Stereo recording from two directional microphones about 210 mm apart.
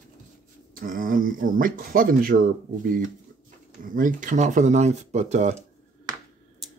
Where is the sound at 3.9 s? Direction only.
40° right (ahead or behind).